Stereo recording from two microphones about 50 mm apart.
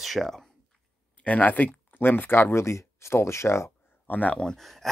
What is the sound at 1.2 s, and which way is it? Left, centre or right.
Speech, left.